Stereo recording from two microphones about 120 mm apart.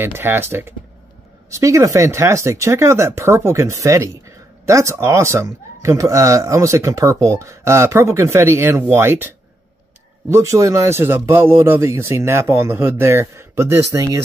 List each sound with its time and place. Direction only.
0.0 s speech: 20° right (ahead or behind)
10.3 s speech: 25° right (ahead or behind)